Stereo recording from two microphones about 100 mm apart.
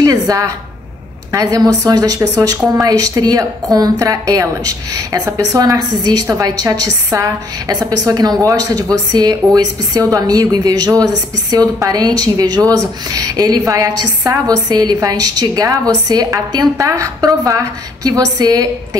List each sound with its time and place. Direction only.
0.0 s a woman's voice: 35° right (ahead or behind)